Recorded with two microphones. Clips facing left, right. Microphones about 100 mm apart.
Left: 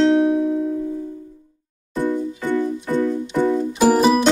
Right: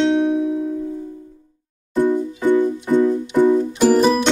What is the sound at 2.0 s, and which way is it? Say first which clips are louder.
Music: right 4 dB; 15° right (ahead or behind).